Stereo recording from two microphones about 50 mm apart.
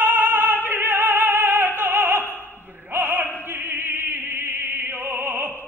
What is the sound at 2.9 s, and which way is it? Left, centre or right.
Opera, right.